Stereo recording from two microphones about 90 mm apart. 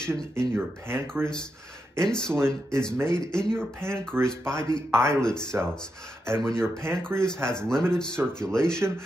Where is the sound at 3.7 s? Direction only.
25° right (ahead or behind).